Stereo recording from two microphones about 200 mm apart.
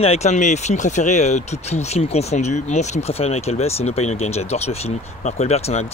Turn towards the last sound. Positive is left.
turn(degrees=30)  # may be behind; listen again after turning